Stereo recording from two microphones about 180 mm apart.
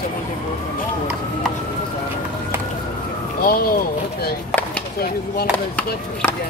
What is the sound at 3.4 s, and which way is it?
Speech, 55° left (ahead or behind).